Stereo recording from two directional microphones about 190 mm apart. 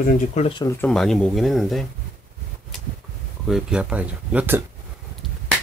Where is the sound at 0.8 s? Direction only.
5° left (ahead or behind).